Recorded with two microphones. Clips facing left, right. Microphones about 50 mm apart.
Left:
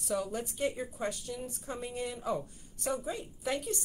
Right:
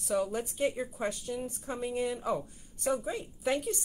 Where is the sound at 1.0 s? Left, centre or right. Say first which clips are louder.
Right 2 dB; right.